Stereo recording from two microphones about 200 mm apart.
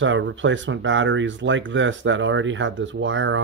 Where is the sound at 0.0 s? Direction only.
70° right (ahead or behind).